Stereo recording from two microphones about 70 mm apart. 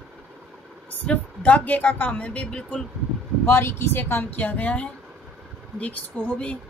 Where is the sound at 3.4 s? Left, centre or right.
Left; by 6.6 s centre.